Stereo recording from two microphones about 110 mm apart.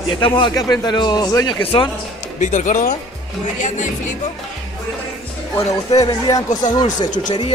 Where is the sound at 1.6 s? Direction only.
55° left (ahead or behind).